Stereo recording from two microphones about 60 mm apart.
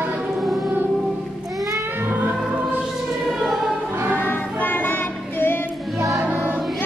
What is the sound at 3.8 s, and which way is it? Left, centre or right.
Music, right.